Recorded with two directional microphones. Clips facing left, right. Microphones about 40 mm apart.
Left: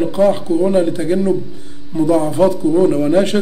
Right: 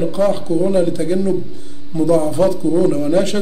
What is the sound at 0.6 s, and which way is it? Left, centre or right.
Speech, left.